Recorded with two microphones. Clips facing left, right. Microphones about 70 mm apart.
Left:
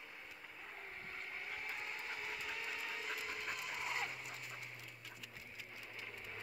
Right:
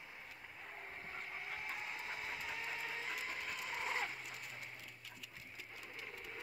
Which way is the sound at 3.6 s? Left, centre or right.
Right.